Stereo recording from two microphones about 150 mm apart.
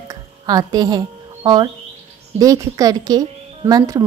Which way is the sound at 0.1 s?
25° right (ahead or behind).